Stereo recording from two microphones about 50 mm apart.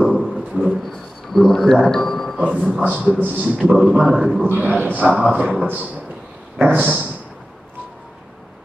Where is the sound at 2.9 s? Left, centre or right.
Right.